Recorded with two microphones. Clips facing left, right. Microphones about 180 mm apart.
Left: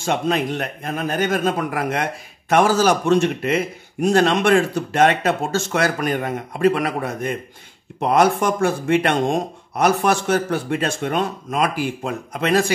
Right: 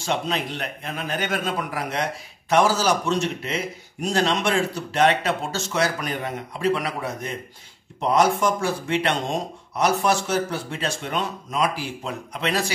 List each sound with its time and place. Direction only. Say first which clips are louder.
0.0 s speech: left 5 dB; 50° left (ahead or behind)